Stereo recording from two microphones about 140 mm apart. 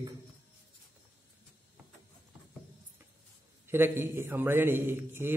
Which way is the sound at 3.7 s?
15° right (ahead or behind).